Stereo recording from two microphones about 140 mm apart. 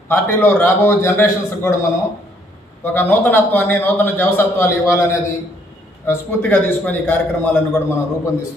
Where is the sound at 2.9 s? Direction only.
15° left (ahead or behind).